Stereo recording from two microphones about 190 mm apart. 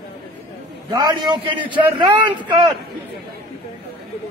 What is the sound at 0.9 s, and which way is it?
Speech, 25° right (ahead or behind).